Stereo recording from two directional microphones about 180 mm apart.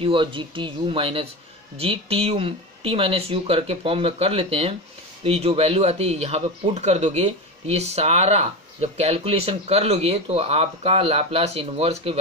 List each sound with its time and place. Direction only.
0.0 s speech: 30° right (ahead or behind)